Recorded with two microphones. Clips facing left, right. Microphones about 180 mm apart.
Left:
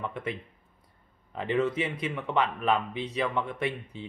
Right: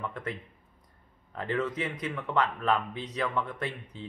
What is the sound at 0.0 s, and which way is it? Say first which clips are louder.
Speech: left 2 dB; 20° left (ahead or behind).